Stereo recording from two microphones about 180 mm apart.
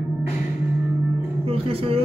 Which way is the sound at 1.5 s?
30° right (ahead or behind).